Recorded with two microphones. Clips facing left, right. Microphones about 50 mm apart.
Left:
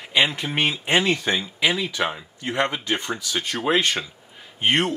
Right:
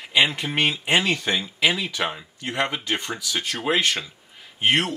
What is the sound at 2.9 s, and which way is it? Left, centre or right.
Speech, left.